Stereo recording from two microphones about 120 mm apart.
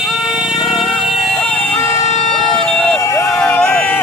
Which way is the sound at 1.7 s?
25° left (ahead or behind).